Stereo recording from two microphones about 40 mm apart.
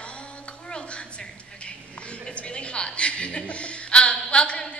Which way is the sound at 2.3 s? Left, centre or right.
Left.